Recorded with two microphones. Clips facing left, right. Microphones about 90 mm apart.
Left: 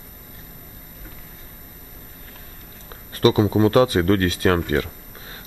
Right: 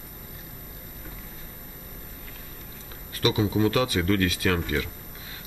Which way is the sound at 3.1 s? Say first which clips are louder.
Left 7 dB; 40° left (ahead or behind).